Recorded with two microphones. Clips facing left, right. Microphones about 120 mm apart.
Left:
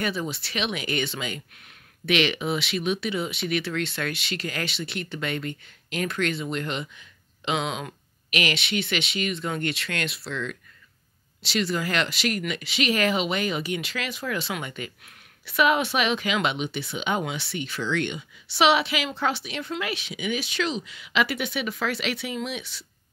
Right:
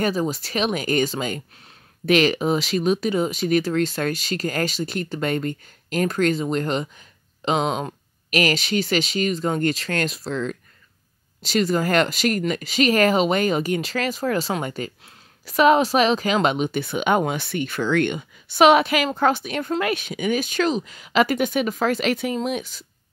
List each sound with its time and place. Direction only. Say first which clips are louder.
0.0 s speech: right 6 dB; 40° right (ahead or behind)